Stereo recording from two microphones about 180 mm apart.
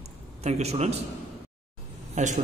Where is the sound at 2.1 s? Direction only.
40° right (ahead or behind).